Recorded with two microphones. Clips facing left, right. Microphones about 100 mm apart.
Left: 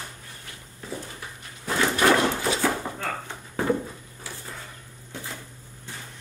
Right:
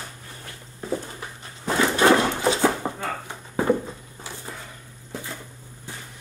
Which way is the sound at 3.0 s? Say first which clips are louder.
Right 1 dB; 10° right (ahead or behind).